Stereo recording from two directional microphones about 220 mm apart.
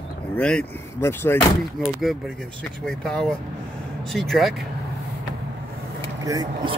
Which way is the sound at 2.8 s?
Centre (ahead or behind).